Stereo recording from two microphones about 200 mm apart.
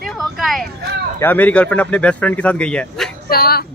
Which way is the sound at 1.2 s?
10° left (ahead or behind).